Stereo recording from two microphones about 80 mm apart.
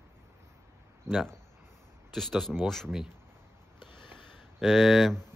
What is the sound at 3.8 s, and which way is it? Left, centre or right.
Sniff, left.